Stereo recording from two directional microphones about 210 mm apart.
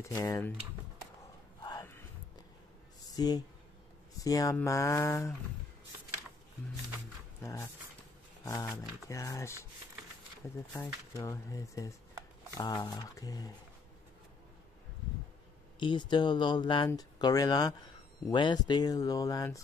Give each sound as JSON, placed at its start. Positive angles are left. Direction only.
{"t": 0.0, "sound": "speech", "side_deg": 15}
{"t": 1.6, "sound": "a sound", "side_deg": 15}
{"t": 3.1, "sound": "speech", "side_deg": 20}
{"t": 7.4, "sound": "dog", "side_deg": 15}
{"t": 8.5, "sound": "speech", "side_deg": 15}
{"t": 11.1, "sound": "speech", "side_deg": 15}
{"t": 15.8, "sound": "speech", "side_deg": 20}